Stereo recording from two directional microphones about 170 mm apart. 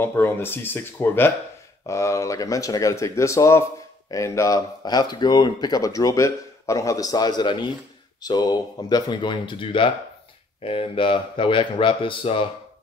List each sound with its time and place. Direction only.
0.0 s a man's voice: 15° left (ahead or behind); by 12.4 s 30° left (ahead or behind)